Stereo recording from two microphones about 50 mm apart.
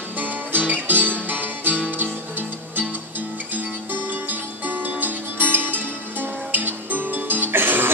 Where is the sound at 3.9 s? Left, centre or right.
Right.